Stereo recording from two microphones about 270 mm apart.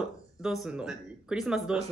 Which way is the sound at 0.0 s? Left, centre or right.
Centre.